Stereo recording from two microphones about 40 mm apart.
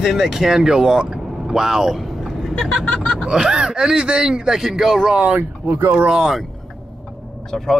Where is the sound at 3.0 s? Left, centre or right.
Left.